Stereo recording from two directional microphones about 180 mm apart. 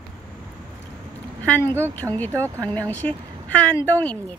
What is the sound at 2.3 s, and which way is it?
Speech, 15° right (ahead or behind).